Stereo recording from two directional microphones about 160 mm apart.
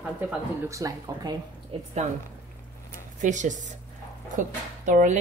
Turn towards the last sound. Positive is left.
turn(degrees=-50)  # may be behind; listen again after turning